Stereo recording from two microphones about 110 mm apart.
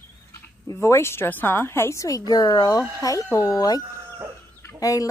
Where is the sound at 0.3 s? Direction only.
25° left (ahead or behind).